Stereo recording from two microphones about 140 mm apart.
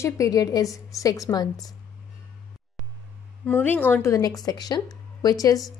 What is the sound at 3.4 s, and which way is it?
A woman's voice, 15° left (ahead or behind).